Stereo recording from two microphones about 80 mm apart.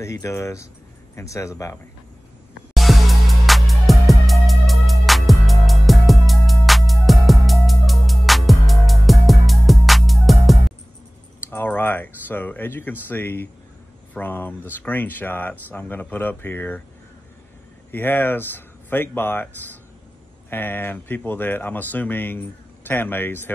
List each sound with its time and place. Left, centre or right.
0.0 s speech: left
2.7 s music: centre
11.4 s a sound: left
13.1 s speech: left
17.9 s speech: left
20.4 s speech: left